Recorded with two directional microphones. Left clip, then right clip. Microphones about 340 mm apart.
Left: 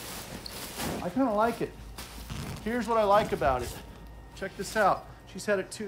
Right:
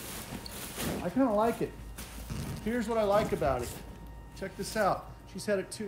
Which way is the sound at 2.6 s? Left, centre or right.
Centre.